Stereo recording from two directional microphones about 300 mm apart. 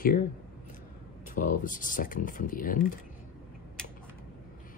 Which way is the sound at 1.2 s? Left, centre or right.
Left.